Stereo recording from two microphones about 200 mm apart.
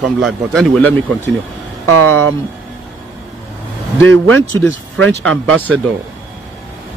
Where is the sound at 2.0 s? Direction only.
90° right.